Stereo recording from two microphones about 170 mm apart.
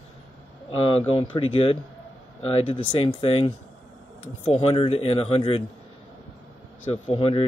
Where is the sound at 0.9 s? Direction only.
35° left (ahead or behind).